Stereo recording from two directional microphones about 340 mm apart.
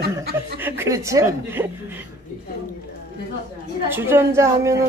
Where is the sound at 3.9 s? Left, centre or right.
Centre.